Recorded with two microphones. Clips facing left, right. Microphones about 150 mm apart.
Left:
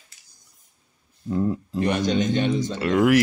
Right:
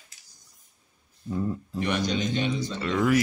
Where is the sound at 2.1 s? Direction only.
50° left (ahead or behind).